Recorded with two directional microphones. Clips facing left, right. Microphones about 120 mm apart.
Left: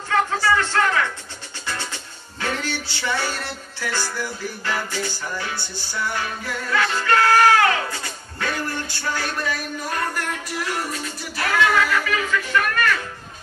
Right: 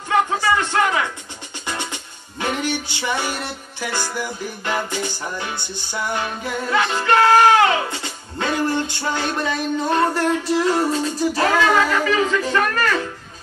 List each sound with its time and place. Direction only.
0.1 s music: 15° right (ahead or behind)